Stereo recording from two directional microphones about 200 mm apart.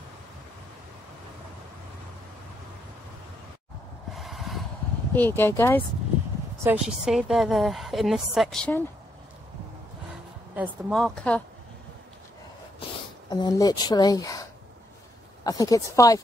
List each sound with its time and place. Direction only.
4.1 s vehicle: centre (ahead or behind)
5.1 s speech: 10° left (ahead or behind)
6.6 s a woman's voice: 10° right (ahead or behind)
10.5 s a woman's voice: 5° right (ahead or behind)
13.3 s speech: 20° left (ahead or behind)
15.4 s speech: 20° left (ahead or behind)